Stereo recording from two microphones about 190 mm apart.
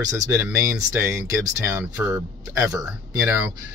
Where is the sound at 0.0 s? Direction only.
15° right (ahead or behind).